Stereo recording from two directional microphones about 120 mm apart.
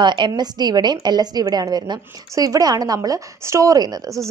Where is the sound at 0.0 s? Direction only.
40° right (ahead or behind).